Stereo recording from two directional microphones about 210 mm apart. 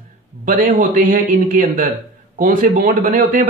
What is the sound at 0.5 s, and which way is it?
A man's voice, 40° right (ahead or behind).